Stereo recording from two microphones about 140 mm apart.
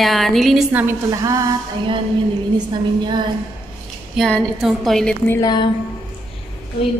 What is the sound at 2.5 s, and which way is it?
Speech, 35° right (ahead or behind).